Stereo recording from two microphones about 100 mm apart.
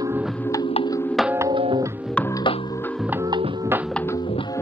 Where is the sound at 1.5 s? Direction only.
55° right (ahead or behind).